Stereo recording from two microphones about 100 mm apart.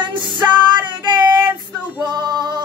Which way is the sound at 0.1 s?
50° right (ahead or behind).